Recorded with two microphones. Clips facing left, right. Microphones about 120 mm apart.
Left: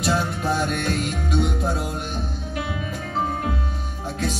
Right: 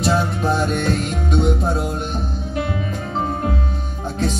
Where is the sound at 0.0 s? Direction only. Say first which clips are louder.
Right 4 dB; 25° right (ahead or behind).